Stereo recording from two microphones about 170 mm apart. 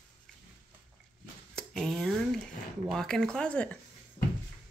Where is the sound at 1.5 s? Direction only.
5° left (ahead or behind).